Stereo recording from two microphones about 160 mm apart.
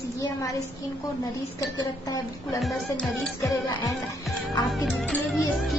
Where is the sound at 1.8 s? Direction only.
20° left (ahead or behind).